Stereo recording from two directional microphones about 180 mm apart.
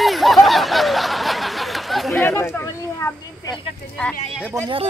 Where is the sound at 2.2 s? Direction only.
15° left (ahead or behind).